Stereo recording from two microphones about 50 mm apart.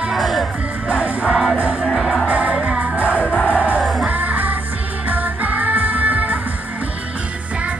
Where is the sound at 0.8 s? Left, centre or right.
Right.